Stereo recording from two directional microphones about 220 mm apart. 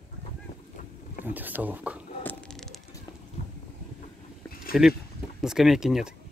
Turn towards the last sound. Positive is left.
turn(degrees=-5)  # may be behind; listen again after turning